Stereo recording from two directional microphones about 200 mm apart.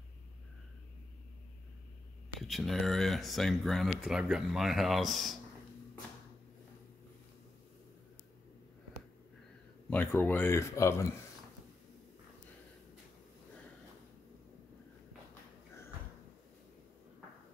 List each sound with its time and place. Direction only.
2.4 s speech: centre (ahead or behind)
9.8 s speech: 10° left (ahead or behind)